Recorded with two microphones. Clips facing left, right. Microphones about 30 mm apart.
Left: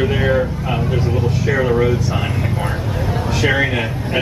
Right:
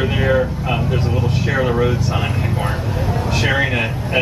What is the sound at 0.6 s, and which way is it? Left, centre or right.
Speech, centre.